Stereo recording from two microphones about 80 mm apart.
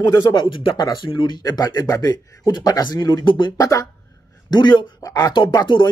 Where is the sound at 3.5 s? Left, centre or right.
Left.